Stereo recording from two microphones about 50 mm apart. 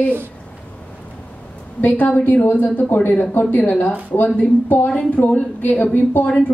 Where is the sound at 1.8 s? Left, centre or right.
Left.